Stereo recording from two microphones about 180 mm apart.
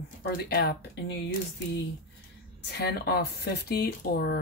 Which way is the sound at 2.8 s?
60° left (ahead or behind).